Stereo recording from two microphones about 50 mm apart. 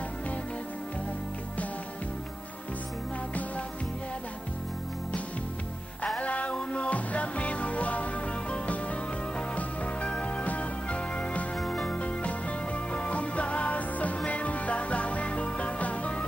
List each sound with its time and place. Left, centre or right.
6.1 s music: left
11.5 s music: centre
11.9 s music: left